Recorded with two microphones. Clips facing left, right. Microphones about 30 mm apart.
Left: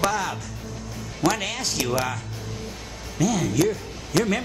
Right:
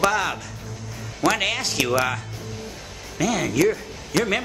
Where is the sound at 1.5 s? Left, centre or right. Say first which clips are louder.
Right 3 dB; right.